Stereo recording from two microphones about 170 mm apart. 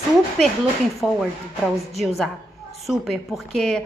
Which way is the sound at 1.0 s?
5° right (ahead or behind).